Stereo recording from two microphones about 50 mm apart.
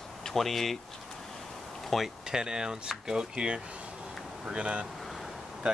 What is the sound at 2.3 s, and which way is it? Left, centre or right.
Speech, centre.